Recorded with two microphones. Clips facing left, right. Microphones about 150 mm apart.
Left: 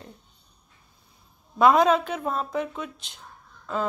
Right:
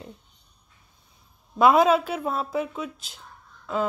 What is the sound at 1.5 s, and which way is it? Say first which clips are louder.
A woman's voice: right 1 dB; 5° right (ahead or behind).